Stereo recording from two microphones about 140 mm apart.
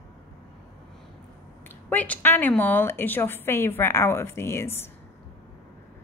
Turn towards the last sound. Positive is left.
turn(degrees=15)  # may be behind; listen again after turning